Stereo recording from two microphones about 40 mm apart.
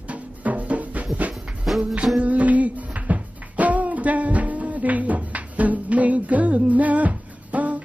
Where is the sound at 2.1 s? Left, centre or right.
Right.